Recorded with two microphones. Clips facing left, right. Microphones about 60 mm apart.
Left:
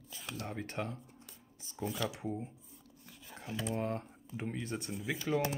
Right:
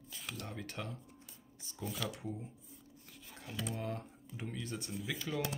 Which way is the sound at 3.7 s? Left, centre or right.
Left.